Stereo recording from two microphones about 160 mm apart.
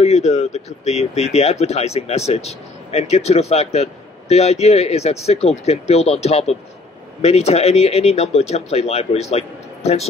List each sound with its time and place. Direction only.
0.0 s speech: 45° left (ahead or behind)